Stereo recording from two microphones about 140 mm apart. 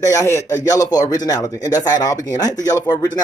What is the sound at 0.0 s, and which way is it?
Speech, 20° left (ahead or behind).